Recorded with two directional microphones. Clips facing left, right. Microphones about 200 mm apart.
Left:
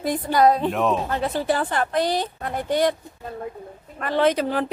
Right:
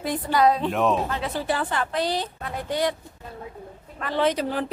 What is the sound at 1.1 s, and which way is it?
Speech, 50° left (ahead or behind).